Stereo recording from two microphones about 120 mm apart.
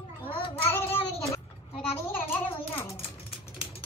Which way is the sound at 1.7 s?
50° left (ahead or behind).